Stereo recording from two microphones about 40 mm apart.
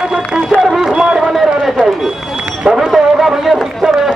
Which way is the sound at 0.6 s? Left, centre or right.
Centre.